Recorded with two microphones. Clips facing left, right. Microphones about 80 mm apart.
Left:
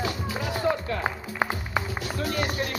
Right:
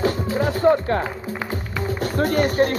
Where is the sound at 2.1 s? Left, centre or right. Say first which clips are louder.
Right 10 dB; right.